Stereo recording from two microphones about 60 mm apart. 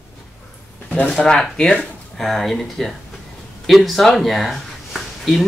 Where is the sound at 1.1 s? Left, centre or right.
Centre.